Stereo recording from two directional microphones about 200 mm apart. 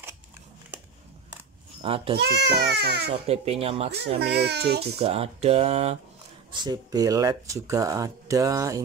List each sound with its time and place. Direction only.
1.8 s speech: 30° right (ahead or behind)
2.1 s a child's voice: 55° right (ahead or behind)
3.1 s speech: 30° right (ahead or behind)
4.2 s a child's voice: 55° right (ahead or behind)
4.9 s speech: 30° right (ahead or behind)
6.5 s speech: 20° right (ahead or behind)